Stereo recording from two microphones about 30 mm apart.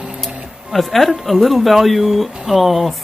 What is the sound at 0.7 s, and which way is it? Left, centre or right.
A woman's voice, centre.